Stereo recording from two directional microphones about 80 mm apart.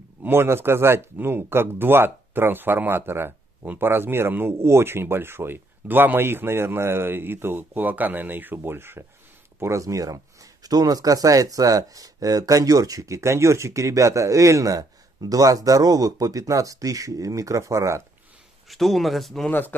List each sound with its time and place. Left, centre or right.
0.2 s speech: right
9.6 s speech: right
18.7 s speech: centre